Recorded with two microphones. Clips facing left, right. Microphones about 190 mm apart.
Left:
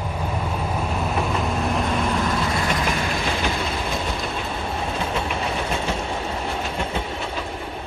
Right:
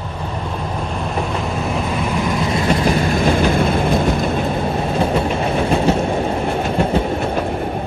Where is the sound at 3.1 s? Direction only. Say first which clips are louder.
Right 9 dB; 50° right (ahead or behind).